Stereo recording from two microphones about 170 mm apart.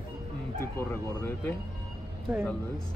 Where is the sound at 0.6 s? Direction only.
15° left (ahead or behind).